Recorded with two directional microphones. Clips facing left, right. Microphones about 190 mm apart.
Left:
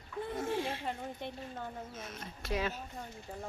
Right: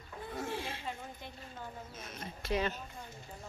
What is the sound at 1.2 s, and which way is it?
Speech, 65° left (ahead or behind).